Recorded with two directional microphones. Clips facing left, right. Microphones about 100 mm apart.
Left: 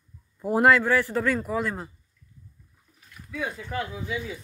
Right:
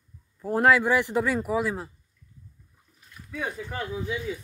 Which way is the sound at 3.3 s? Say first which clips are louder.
Left 1 dB; 35° right (ahead or behind).